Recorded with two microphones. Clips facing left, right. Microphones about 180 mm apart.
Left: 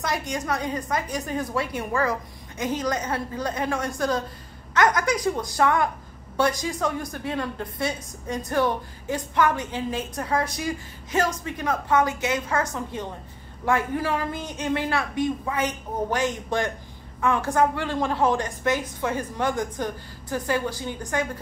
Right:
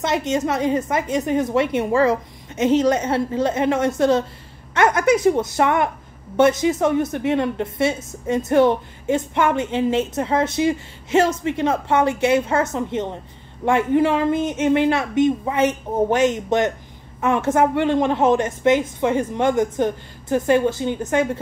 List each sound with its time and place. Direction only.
0.0 s a woman's voice: 25° right (ahead or behind)